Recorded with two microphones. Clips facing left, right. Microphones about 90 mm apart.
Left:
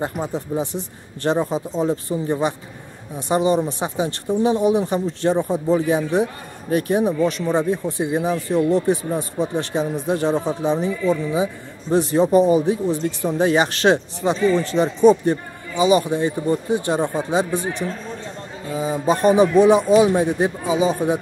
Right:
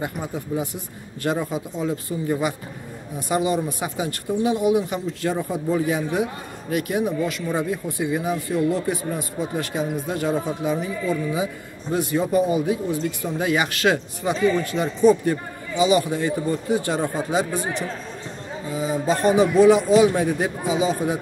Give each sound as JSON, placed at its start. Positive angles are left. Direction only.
{"t": 0.0, "sound": "speech", "side_deg": 25}
{"t": 18.8, "sound": "speech", "side_deg": 25}